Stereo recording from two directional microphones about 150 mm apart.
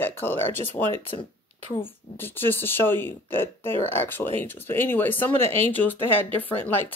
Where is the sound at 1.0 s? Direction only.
35° left (ahead or behind).